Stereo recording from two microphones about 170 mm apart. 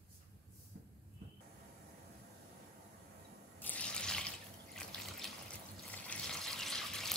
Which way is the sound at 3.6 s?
10° left (ahead or behind).